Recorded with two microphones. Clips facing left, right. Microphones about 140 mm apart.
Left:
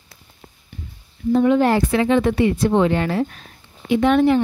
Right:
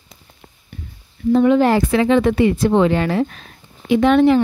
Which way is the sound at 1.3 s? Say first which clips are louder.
Right 2 dB; 90° right.